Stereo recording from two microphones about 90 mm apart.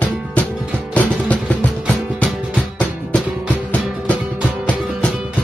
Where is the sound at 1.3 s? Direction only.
15° left (ahead or behind).